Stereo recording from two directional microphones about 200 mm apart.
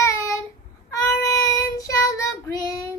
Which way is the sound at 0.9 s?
15° left (ahead or behind).